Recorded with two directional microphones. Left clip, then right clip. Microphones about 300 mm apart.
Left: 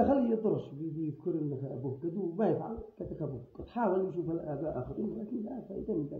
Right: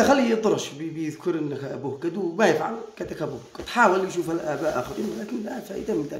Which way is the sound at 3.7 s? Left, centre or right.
Centre.